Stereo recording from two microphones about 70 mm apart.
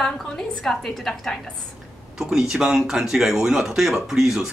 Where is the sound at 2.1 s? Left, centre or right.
Centre.